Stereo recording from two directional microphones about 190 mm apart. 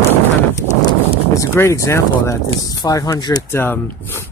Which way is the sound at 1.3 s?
15° left (ahead or behind).